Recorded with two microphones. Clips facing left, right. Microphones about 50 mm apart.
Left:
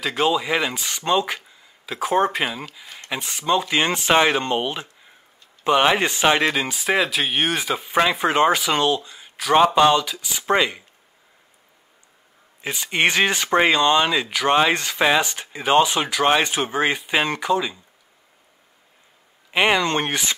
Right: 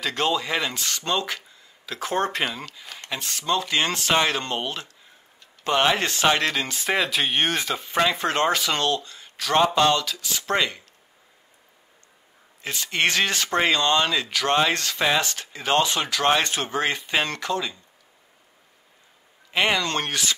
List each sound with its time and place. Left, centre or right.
0.0 s speech: centre
12.6 s speech: centre
19.5 s speech: centre